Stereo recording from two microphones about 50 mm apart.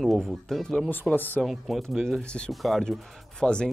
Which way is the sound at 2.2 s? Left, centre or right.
Centre.